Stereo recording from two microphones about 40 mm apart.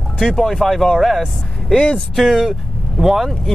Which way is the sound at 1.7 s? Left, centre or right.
Left.